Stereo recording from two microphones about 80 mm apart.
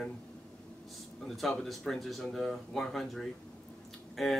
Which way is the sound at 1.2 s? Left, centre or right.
Centre.